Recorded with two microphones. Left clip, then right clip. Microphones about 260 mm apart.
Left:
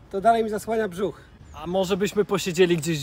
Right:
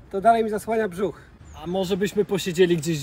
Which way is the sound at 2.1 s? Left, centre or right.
Left.